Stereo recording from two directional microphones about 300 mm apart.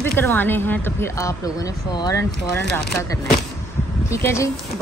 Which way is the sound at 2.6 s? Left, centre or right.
Left.